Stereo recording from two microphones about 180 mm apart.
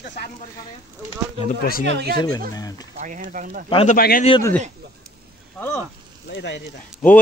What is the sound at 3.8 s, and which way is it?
Speech, 50° left (ahead or behind).